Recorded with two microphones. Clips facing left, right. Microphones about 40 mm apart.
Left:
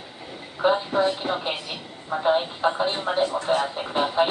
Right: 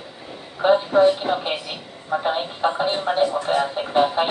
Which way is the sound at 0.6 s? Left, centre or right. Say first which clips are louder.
Right 5 dB; centre.